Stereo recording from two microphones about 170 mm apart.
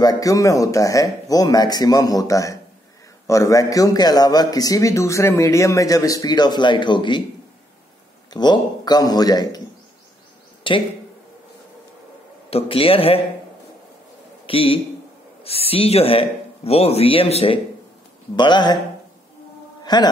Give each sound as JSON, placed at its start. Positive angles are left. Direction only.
{"t": 0.0, "sound": "a man's voice", "side_deg": 20}
{"t": 8.3, "sound": "a man's voice", "side_deg": 25}
{"t": 10.6, "sound": "speech", "side_deg": 30}
{"t": 12.4, "sound": "a man's voice", "side_deg": 35}
{"t": 14.4, "sound": "a man's voice", "side_deg": 35}
{"t": 19.8, "sound": "a sound", "side_deg": 25}